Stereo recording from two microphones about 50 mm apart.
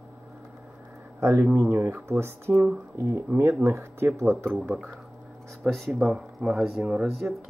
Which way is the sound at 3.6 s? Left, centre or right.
Right.